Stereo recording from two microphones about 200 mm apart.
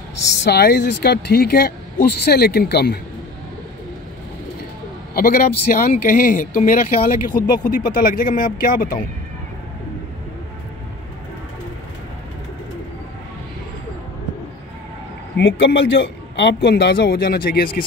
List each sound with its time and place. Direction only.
0.4 s speech: 55° left (ahead or behind)
5.1 s speech: 45° left (ahead or behind)
15.3 s speech: 55° left (ahead or behind)